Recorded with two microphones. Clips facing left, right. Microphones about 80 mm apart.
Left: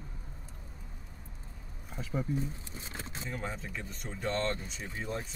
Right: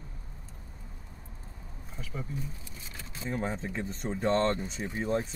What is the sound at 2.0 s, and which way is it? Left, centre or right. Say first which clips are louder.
Speech: left 5 dB; left.